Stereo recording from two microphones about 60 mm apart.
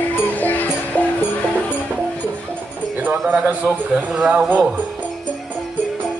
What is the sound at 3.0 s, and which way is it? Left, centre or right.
Bird, right.